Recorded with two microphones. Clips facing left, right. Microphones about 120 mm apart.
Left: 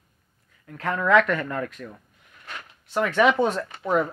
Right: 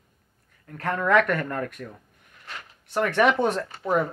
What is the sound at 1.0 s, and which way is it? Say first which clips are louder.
Speech: left 1 dB; 50° right (ahead or behind).